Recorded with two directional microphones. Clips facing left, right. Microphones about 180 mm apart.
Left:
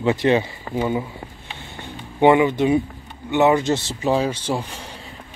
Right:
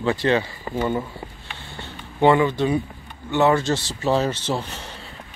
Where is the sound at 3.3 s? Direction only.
20° left (ahead or behind).